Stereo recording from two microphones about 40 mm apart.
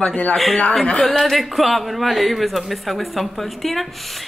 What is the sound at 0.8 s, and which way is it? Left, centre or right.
Speech, left.